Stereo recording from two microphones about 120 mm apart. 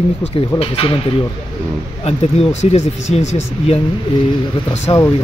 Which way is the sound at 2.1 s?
60° left (ahead or behind).